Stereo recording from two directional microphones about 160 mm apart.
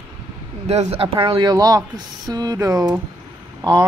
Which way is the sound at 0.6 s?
45° right (ahead or behind).